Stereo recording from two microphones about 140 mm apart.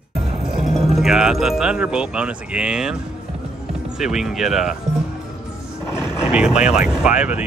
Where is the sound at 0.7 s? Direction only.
Centre (ahead or behind).